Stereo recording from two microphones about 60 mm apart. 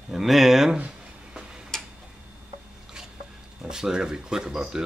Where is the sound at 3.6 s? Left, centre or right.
Centre.